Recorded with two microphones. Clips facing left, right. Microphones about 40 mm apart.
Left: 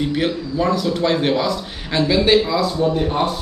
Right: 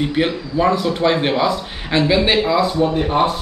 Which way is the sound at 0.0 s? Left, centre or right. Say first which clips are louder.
Right 1 dB; centre.